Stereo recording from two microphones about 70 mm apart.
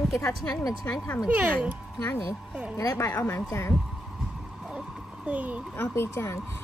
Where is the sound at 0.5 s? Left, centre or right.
Left.